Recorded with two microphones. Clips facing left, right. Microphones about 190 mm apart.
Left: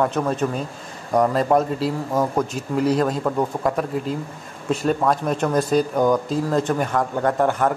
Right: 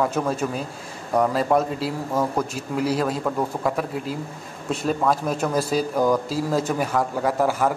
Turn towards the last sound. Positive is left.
turn(degrees=-5)  # may be behind; listen again after turning